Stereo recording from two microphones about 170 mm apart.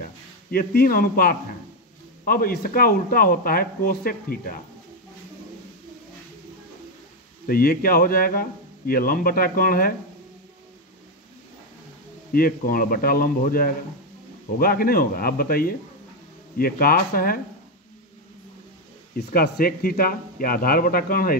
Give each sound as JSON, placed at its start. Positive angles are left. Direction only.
{"t": 0.0, "sound": "a man's voice", "side_deg": 60}
{"t": 7.4, "sound": "a man's voice", "side_deg": 60}
{"t": 12.3, "sound": "a man's voice", "side_deg": 60}
{"t": 19.1, "sound": "a man's voice", "side_deg": 70}